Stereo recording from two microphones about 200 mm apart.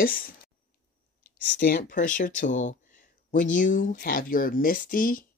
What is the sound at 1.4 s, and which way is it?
Speech, 40° left (ahead or behind).